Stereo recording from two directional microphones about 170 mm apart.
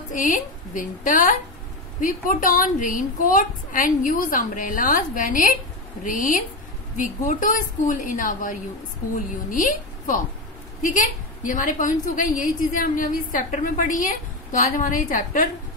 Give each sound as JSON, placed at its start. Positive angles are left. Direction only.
{"t": 0.1, "sound": "a woman's voice", "side_deg": 50}